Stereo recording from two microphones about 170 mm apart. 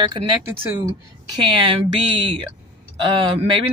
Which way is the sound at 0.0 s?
25° right (ahead or behind).